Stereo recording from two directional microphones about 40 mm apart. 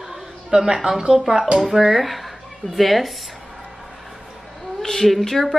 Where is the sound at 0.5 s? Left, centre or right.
Centre.